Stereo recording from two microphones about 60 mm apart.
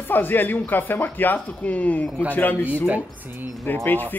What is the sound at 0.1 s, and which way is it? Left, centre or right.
Speech, left.